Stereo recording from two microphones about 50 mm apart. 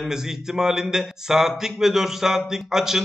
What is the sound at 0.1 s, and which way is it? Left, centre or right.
Speech, centre.